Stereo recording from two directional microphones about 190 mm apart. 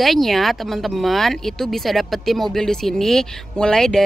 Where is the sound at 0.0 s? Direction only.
Centre (ahead or behind).